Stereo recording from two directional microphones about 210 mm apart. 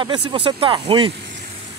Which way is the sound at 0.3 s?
25° right (ahead or behind).